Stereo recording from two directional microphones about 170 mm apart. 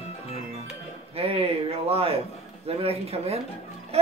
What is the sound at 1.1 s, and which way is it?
Speech, 35° right (ahead or behind).